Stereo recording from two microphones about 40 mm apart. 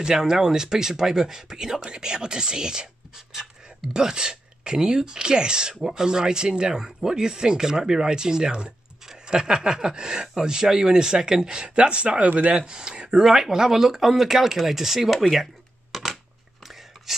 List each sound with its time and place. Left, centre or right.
0.0 s speech: centre
3.9 s speech: centre
13.2 s speech: centre
15.1 s a sound: centre